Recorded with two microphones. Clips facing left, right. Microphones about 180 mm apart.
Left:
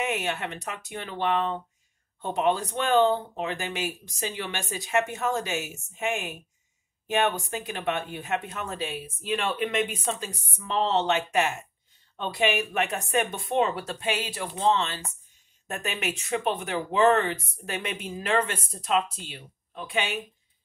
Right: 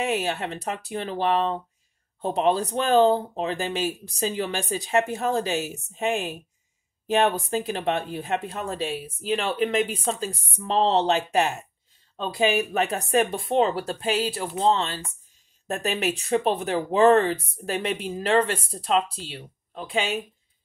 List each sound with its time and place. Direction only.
0.0 s speech: 35° right (ahead or behind)
12.5 s speech: 35° right (ahead or behind)